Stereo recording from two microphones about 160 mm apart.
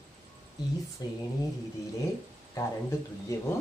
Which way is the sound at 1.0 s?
20° left (ahead or behind).